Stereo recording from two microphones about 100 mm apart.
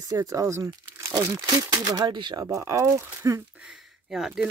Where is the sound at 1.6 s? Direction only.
50° right (ahead or behind).